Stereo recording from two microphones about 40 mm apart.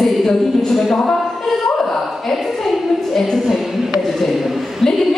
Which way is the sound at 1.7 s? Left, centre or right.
Centre.